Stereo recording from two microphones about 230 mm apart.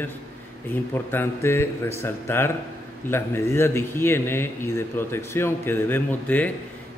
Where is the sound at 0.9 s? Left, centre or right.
Centre.